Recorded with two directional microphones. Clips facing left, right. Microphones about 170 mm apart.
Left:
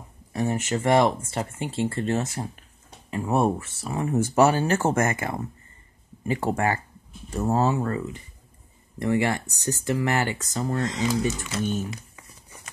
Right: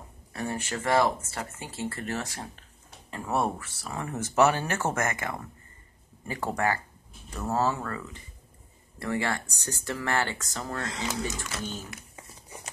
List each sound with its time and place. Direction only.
0.3 s speech: 20° left (ahead or behind)